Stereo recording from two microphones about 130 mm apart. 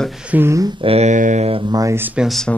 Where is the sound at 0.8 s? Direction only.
55° right (ahead or behind).